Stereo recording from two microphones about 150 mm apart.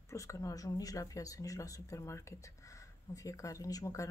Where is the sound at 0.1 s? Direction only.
20° left (ahead or behind).